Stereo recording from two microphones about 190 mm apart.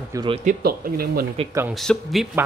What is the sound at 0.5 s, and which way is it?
Speech, 50° right (ahead or behind).